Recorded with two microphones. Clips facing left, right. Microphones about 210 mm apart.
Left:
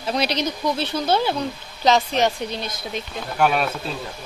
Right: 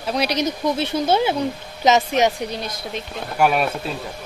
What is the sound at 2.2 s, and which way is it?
Speech, 10° right (ahead or behind).